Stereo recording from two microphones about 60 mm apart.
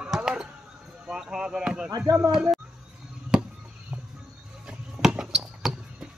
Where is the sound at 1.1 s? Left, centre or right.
Centre.